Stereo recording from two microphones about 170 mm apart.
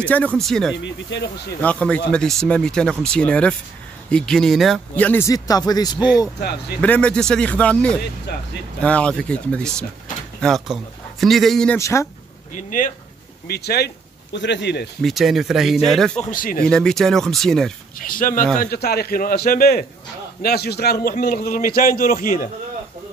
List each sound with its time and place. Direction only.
0.0 s speech: 10° left (ahead or behind)
0.8 s speech: 90° left
1.6 s speech: 10° left (ahead or behind); by 5.9 s 25° left (ahead or behind)
6.8 s speech: 5° left (ahead or behind)
11.8 s speech: 15° left (ahead or behind)
12.5 s speech: 50° left (ahead or behind)
13.5 s speech: 70° left (ahead or behind); by 14.9 s 85° left
15.0 s speech: centre (ahead or behind)
16.2 s speech: 50° left (ahead or behind)
16.6 s speech: 5° left (ahead or behind)
17.9 s a man's voice: 55° left (ahead or behind)
18.6 s a man's voice: 65° left (ahead or behind)
21.1 s a man's voice: 60° left (ahead or behind)